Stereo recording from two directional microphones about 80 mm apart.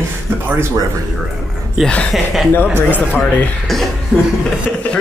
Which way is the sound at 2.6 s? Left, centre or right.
Right.